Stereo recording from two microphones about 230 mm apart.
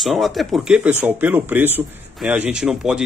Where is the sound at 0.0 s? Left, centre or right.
Centre.